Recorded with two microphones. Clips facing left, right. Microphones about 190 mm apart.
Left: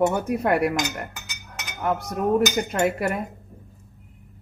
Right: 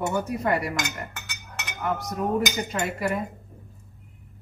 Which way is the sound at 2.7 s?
60° left (ahead or behind).